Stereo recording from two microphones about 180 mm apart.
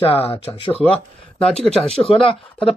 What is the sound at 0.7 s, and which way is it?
Speech, 5° left (ahead or behind).